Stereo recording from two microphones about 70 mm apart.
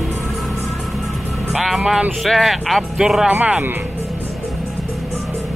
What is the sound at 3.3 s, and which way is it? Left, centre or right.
Speech, right.